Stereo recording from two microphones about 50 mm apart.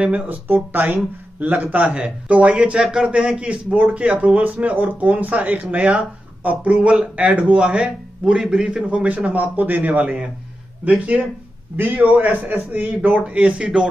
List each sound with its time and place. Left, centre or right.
0.0 s a man's voice: right
2.8 s a man's voice: centre
8.9 s a man's voice: right
13.0 s a man's voice: right